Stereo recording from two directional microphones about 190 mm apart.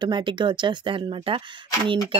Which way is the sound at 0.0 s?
25° right (ahead or behind).